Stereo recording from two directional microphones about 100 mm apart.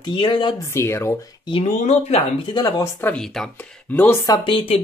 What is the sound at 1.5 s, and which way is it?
Speech, 85° left.